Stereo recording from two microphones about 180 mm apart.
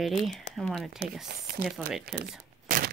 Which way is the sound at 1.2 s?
55° right (ahead or behind).